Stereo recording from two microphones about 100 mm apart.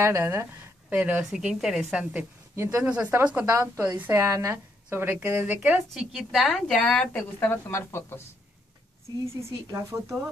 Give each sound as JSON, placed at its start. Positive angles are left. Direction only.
{"t": 0.0, "sound": "a woman's voice", "side_deg": -25}
{"t": 2.5, "sound": "speech", "side_deg": -25}
{"t": 2.8, "sound": "a woman's voice", "side_deg": -15}
{"t": 4.1, "sound": "speech", "side_deg": -30}
{"t": 4.8, "sound": "a woman's voice", "side_deg": -15}
{"t": 7.2, "sound": "a woman's voice", "side_deg": 20}
{"t": 9.7, "sound": "speech", "side_deg": -30}